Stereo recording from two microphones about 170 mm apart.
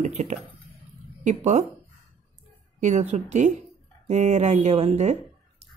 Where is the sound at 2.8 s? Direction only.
45° right (ahead or behind).